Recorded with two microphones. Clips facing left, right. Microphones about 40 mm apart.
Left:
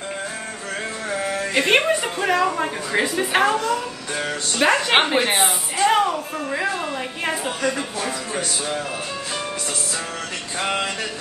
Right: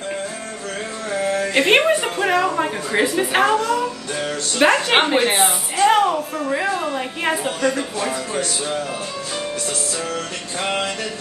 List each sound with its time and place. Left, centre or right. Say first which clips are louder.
1.5 s a woman's voice: right 2 dB; centre
4.1 s music: right 1 dB; centre
4.6 s a woman's voice: right 2 dB; centre